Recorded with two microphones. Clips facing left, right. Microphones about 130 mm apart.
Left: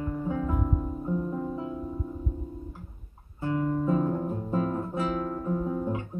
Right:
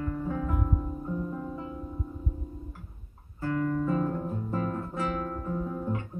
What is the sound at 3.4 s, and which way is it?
Guitar, 20° left (ahead or behind).